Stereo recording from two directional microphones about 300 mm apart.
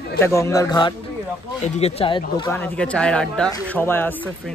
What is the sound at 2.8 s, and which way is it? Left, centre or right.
Speech, centre.